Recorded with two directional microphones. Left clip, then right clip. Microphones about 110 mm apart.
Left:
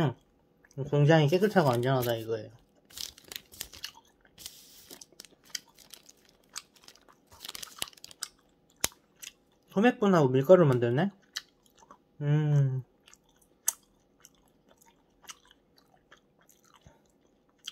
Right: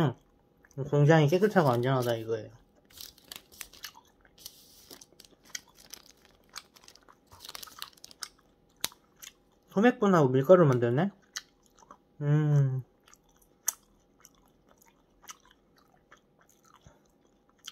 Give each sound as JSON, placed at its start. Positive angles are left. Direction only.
{"t": 0.0, "sound": "speech", "side_deg": 5}
{"t": 3.8, "sound": "biting", "side_deg": 10}
{"t": 5.5, "sound": "scissors", "side_deg": 15}
{"t": 9.2, "sound": "a sound", "side_deg": 15}
{"t": 14.2, "sound": "chewing", "side_deg": 10}
{"t": 16.6, "sound": "chewing", "side_deg": 15}